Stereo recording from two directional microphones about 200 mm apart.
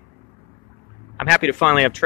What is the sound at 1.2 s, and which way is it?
Speech, centre (ahead or behind).